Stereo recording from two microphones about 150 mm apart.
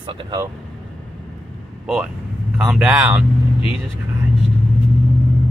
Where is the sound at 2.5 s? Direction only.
15° right (ahead or behind).